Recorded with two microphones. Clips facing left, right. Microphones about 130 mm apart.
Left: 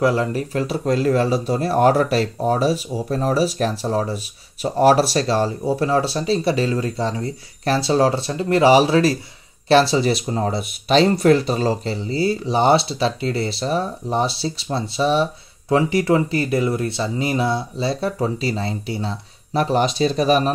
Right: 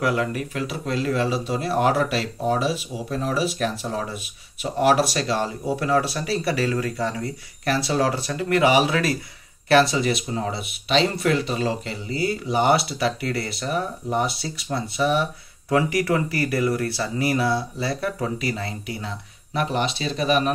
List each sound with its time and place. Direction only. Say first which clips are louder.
0.0 s speech: left 4 dB; 30° left (ahead or behind)